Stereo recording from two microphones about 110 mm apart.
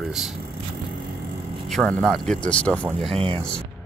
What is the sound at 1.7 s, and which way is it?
Speech, 5° left (ahead or behind).